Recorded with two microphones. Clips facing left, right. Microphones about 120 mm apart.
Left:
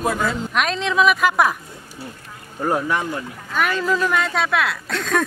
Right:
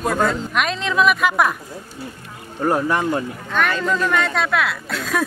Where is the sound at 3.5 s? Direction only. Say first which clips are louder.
Even; 5° left (ahead or behind).